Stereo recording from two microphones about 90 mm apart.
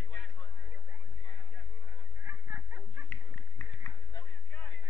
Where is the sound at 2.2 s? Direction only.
20° right (ahead or behind).